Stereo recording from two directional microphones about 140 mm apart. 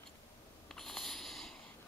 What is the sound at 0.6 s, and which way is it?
Sniff, 5° left (ahead or behind).